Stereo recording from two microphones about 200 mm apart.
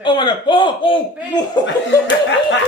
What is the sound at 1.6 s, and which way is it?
Laughter, 65° left (ahead or behind).